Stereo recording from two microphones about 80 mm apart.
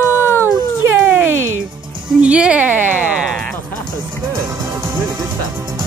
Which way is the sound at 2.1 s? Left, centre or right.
Centre.